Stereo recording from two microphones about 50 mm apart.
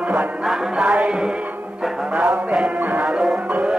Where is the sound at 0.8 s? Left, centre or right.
Right.